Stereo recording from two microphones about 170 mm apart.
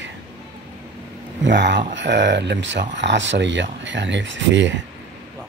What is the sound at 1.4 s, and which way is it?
Speech, 90° right.